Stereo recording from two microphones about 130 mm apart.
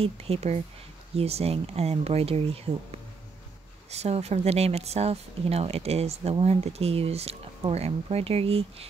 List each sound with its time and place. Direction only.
0.0 s speech: 50° right (ahead or behind)